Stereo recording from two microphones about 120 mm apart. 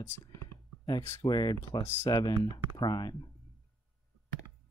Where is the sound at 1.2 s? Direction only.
35° left (ahead or behind).